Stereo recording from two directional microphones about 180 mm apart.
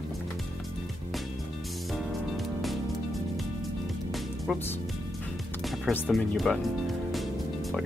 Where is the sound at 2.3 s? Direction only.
Centre (ahead or behind).